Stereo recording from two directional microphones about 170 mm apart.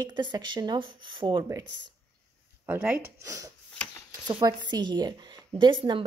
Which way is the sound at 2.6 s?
10° right (ahead or behind).